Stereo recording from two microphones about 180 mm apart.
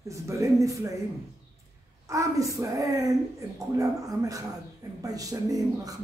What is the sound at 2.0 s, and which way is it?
A woman's voice, 15° right (ahead or behind).